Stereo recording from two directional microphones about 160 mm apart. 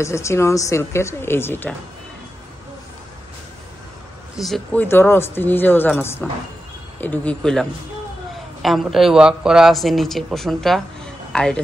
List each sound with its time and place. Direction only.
0.0 s speech: 20° left (ahead or behind)
4.4 s speech: centre (ahead or behind)
4.7 s speech: 15° left (ahead or behind)
8.6 s speech: centre (ahead or behind)